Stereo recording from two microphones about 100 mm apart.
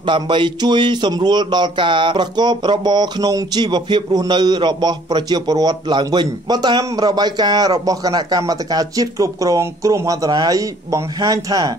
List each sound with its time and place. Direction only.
0.0 s a man's voice: 55° right (ahead or behind)